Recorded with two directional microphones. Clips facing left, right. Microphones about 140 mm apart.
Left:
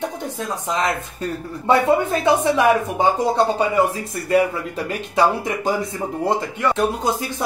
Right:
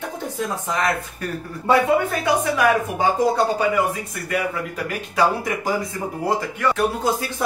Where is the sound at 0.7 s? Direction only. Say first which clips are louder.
Left 2 dB; 20° left (ahead or behind).